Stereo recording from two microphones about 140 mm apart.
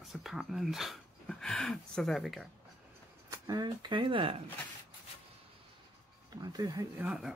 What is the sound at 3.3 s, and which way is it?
Speech, 25° right (ahead or behind).